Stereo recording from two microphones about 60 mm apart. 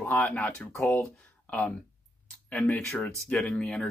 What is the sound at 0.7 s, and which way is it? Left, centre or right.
Speech, left.